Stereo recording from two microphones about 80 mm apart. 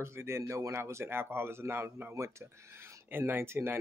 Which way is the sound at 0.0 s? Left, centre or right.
Right.